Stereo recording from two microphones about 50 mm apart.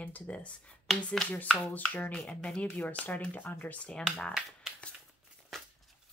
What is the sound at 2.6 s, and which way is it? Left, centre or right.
Speech, left.